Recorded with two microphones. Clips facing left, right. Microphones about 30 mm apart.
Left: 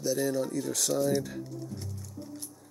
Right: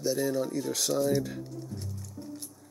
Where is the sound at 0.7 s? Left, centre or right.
Centre.